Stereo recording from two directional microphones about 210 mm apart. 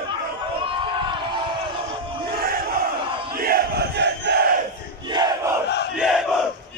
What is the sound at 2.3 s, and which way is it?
Crowd, 45° right (ahead or behind).